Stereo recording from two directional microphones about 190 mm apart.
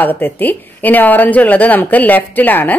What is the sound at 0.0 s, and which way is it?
A woman's voice, 10° left (ahead or behind).